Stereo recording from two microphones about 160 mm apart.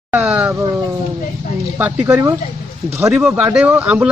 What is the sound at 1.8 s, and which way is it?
Speech, 15° right (ahead or behind).